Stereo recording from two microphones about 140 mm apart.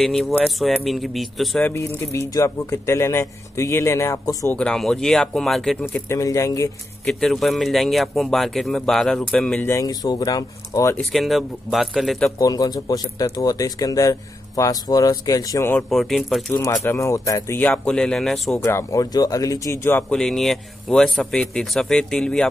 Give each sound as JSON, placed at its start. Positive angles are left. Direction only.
{"t": 0.0, "sound": "speech", "side_deg": 0}
{"t": 1.6, "sound": "speech", "side_deg": 20}
{"t": 4.6, "sound": "speech", "side_deg": 5}
{"t": 6.1, "sound": "speech", "side_deg": 25}
{"t": 7.1, "sound": "speech", "side_deg": 0}
{"t": 9.7, "sound": "speech", "side_deg": 25}
{"t": 11.0, "sound": "speech", "side_deg": 0}
{"t": 12.4, "sound": "speech", "side_deg": 25}
{"t": 15.7, "sound": "speech", "side_deg": 0}
{"t": 16.5, "sound": "speech", "side_deg": 15}
{"t": 18.6, "sound": "speech", "side_deg": 20}